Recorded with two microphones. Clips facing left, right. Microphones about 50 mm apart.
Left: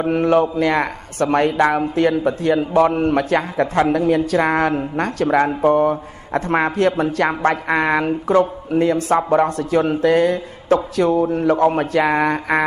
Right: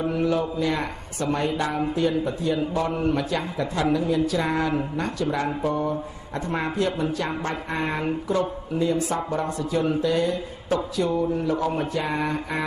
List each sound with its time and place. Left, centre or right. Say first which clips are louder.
0.0 s a man's voice: left 8 dB; left